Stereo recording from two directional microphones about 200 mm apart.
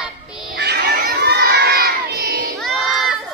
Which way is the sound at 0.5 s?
60° right (ahead or behind).